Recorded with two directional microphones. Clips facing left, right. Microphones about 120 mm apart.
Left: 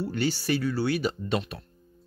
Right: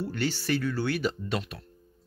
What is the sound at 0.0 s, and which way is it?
Speech, 15° left (ahead or behind).